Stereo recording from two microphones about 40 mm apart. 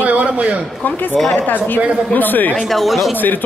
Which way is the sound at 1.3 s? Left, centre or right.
Left.